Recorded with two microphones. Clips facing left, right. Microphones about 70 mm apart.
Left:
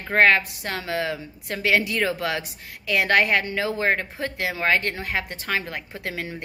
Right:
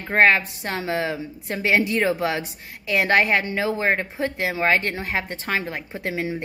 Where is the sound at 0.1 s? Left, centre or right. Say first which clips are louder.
Right 1 dB; right.